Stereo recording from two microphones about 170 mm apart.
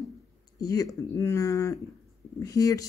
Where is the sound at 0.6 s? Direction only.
20° left (ahead or behind).